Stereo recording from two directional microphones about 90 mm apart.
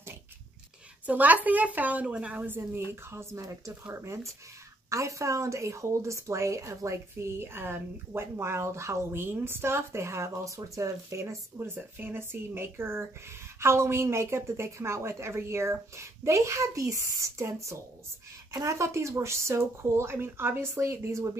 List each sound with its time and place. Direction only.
1.0 s a woman's voice: 20° right (ahead or behind)